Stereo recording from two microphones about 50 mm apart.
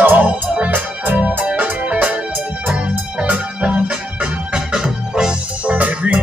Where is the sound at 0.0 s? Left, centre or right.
Right.